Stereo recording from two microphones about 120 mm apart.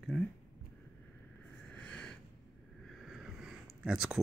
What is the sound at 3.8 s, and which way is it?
Speech, 5° right (ahead or behind).